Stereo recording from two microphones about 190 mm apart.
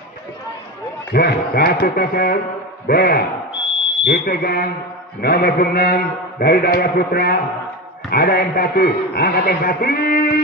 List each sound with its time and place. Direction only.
1.1 s a man's voice: 55° left (ahead or behind)